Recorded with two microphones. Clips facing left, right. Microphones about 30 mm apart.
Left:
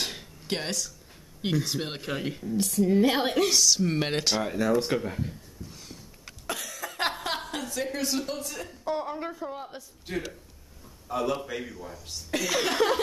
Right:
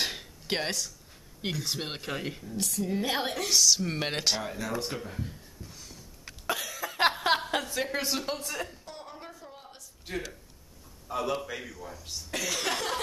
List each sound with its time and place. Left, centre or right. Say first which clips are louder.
0.0 s a sound: right 1 dB; centre
1.4 s speech: left 4 dB; centre
6.4 s a sound: right 2 dB; centre
7.7 s a woman's voice: left 1 dB; right
8.8 s a woman's voice: left 13 dB; centre
10.1 s speech: left 3 dB; centre